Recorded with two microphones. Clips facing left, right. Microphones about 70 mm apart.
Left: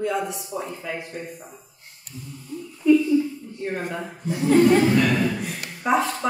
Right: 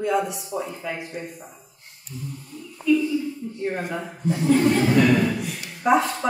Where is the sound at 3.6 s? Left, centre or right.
Centre.